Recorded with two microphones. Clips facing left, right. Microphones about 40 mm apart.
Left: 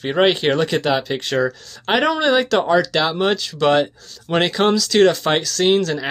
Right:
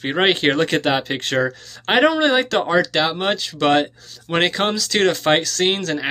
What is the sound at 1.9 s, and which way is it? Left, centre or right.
Speech, right.